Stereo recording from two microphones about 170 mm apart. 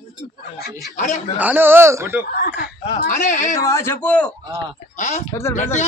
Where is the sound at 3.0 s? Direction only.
45° left (ahead or behind).